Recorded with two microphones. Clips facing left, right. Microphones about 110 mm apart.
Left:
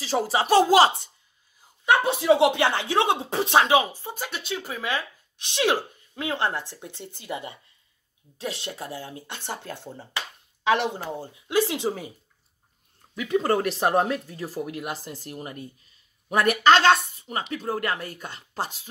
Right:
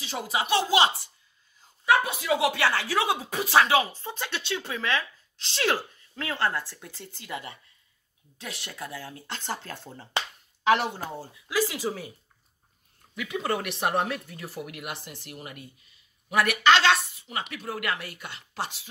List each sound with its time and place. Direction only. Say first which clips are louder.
0.0 s a woman's voice: left 6 dB; 35° left (ahead or behind)
1.9 s speech: left 4 dB; 25° left (ahead or behind)
11.1 s speech: left 4 dB; 25° left (ahead or behind)
13.3 s a woman's voice: left 7 dB; 35° left (ahead or behind)